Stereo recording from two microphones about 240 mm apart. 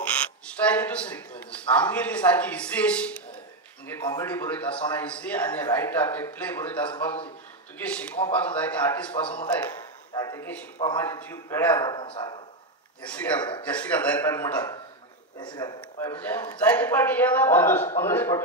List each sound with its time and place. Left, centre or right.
0.0 s a man's voice: centre
13.0 s a man's voice: centre